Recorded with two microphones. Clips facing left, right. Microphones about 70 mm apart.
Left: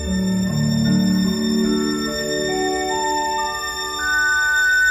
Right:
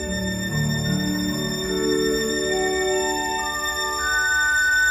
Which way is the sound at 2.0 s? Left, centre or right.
Left.